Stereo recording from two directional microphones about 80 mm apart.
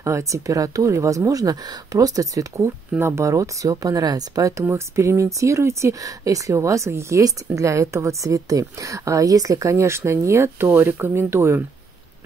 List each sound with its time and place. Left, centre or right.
0.0 s speech: right